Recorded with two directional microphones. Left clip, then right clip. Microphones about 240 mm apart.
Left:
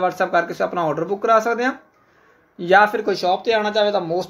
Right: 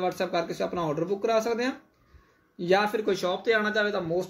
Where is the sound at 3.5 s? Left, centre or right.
Centre.